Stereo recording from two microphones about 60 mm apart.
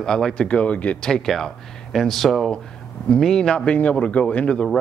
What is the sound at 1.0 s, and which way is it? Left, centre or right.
Speech, centre.